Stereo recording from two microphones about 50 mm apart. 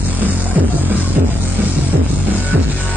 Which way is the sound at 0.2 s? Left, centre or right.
Right.